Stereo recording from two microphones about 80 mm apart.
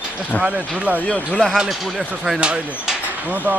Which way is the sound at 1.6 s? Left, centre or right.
Centre.